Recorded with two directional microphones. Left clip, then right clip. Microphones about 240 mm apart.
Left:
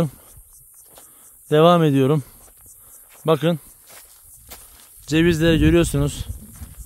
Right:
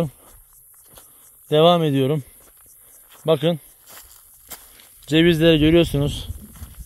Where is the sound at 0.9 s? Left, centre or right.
Right.